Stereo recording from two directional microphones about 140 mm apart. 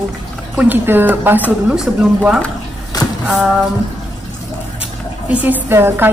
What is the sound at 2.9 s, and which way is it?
Music, 30° left (ahead or behind).